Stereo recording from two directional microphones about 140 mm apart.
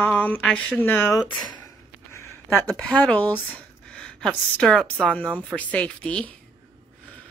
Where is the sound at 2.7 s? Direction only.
5° left (ahead or behind).